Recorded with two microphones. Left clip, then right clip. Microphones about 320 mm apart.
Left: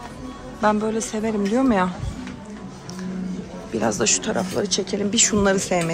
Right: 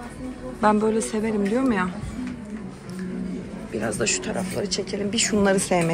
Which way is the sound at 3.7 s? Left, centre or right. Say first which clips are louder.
Left 4 dB; centre.